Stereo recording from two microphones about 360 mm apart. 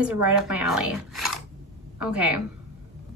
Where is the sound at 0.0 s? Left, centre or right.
Centre.